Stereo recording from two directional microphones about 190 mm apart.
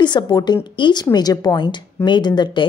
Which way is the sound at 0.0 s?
20° left (ahead or behind).